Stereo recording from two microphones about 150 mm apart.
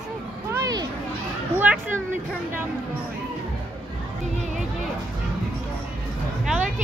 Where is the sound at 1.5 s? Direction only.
10° right (ahead or behind).